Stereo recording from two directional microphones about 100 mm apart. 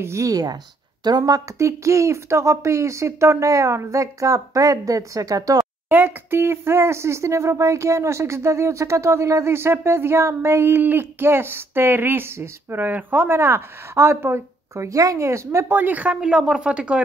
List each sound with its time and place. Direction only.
0.0 s speech: 30° right (ahead or behind)
5.9 s speech: 20° right (ahead or behind)